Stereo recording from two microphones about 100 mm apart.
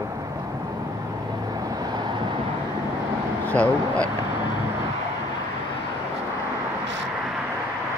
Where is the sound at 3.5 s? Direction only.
15° left (ahead or behind).